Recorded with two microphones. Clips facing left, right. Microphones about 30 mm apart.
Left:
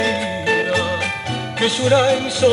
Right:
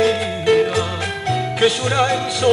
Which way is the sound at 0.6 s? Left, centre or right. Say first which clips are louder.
Even; centre.